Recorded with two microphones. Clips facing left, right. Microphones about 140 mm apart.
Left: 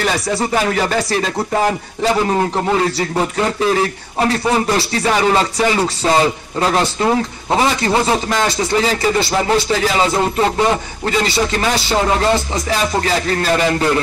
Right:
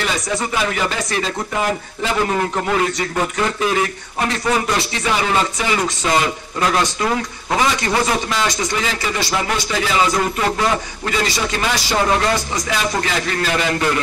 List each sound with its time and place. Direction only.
0.3 s a man's voice: 35° left (ahead or behind)
2.3 s a man's voice: 30° left (ahead or behind)